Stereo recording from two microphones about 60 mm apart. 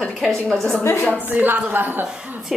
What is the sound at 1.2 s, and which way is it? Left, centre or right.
Speech, right.